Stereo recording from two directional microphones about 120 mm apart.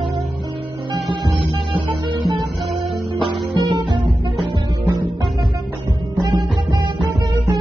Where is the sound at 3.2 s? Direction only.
40° right (ahead or behind).